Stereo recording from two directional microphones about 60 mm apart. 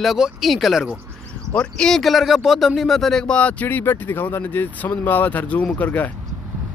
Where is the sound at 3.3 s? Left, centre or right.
Left.